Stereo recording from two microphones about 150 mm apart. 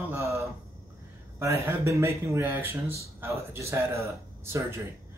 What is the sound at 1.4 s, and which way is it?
Speech, 20° right (ahead or behind).